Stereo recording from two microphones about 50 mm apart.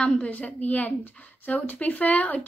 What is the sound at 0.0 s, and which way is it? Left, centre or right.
A woman's voice, left.